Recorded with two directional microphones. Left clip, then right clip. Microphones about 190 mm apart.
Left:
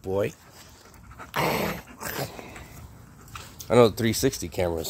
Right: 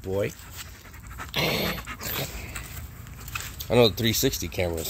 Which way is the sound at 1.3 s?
30° left (ahead or behind).